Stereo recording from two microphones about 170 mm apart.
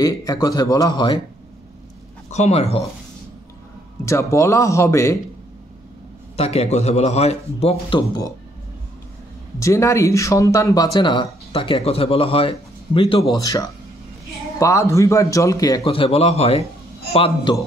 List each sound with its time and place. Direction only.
0.0 s speech: 20° left (ahead or behind)
2.2 s speech: 40° left (ahead or behind)
4.0 s a man's voice: 15° left (ahead or behind)
6.3 s a man's voice: 35° left (ahead or behind)
9.6 s a man's voice: 15° left (ahead or behind)
15.8 s a man's voice: 35° left (ahead or behind)